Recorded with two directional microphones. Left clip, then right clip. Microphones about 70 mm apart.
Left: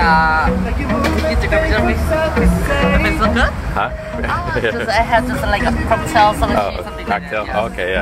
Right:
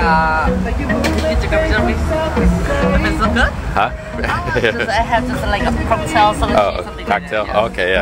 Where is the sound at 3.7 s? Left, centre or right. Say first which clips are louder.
Right 2 dB; right.